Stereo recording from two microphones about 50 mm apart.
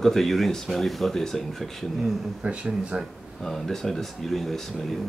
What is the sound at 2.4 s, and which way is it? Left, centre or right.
Speech, right.